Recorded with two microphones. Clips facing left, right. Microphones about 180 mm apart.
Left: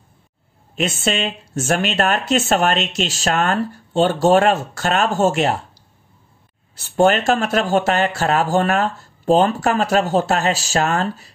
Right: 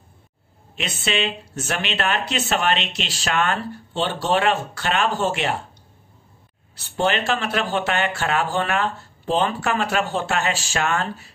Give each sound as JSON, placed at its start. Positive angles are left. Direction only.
{"t": 0.7, "sound": "a woman's voice", "side_deg": 45}
{"t": 6.7, "sound": "speech", "side_deg": 45}